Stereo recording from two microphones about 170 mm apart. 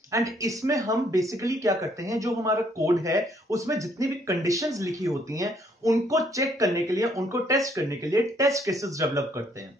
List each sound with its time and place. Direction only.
0.1 s speech: 20° right (ahead or behind)